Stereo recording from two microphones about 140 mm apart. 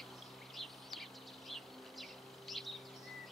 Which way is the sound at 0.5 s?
Centre (ahead or behind).